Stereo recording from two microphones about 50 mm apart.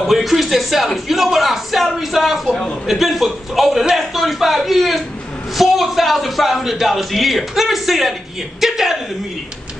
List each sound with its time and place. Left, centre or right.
0.0 s a man's voice: centre
3.9 s a sound: centre
5.6 s a man's voice: centre